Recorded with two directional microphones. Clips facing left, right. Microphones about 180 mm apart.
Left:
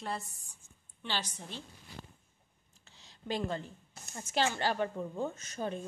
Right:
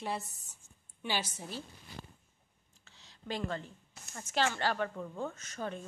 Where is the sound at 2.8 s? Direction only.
20° left (ahead or behind).